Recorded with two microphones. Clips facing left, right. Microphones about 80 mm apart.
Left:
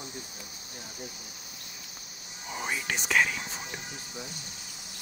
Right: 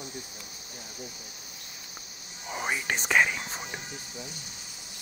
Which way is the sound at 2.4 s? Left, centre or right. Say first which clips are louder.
Right 2 dB; right.